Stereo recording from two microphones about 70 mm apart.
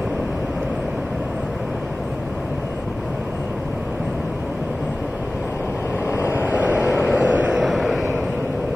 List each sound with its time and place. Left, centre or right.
6.0 s vehicle: left
6.4 s vehicle: right
7.5 s vehicle: centre